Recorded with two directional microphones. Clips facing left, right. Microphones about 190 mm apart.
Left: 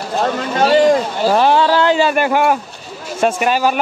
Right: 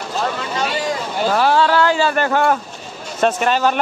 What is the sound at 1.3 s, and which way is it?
Speech, 20° left (ahead or behind).